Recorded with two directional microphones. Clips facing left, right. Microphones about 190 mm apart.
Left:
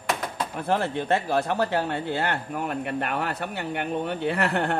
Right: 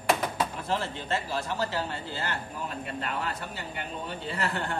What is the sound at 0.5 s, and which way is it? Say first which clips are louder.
Speech: left 6 dB; 60° left (ahead or behind).